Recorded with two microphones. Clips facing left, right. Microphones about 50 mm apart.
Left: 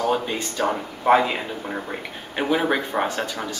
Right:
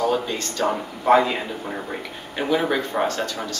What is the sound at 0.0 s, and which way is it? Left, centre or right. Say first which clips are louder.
Speech: even; centre.